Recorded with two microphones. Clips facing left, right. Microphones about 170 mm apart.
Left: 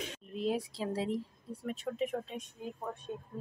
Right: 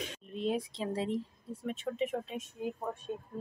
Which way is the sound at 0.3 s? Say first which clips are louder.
Even; centre (ahead or behind).